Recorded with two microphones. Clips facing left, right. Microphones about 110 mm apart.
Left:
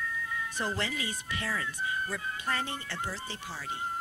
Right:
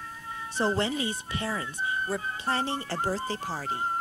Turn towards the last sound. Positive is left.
turn(degrees=-40)  # may be behind; listen again after turning